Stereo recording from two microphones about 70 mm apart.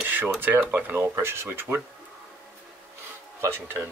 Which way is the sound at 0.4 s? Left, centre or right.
Right.